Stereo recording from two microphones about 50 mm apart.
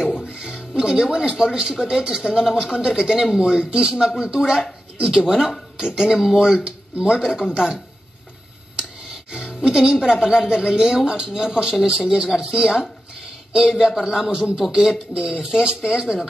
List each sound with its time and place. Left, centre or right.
0.3 s music: centre
0.7 s speech: centre
8.7 s music: centre
10.5 s speech: centre
14.6 s speech: centre